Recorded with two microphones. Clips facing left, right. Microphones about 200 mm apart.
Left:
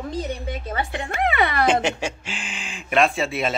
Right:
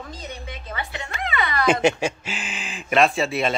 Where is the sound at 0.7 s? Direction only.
50° left (ahead or behind).